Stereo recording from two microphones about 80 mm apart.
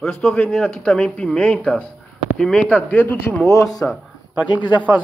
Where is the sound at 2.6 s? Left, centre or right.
Left.